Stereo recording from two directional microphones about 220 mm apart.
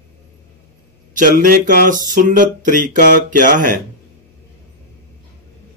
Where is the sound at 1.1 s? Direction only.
40° right (ahead or behind).